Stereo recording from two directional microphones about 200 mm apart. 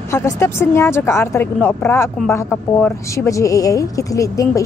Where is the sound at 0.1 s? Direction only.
15° left (ahead or behind).